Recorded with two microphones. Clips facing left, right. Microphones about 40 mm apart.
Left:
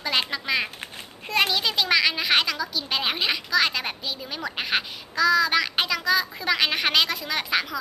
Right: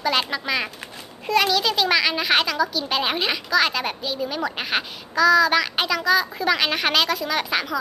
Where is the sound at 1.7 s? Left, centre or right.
Centre.